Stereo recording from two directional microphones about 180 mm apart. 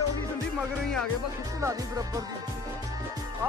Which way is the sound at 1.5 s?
20° right (ahead or behind).